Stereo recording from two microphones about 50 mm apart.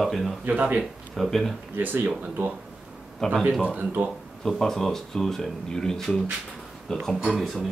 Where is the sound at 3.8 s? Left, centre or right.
Right.